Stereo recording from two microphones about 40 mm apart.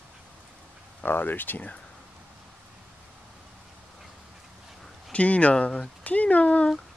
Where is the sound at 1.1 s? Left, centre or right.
Left.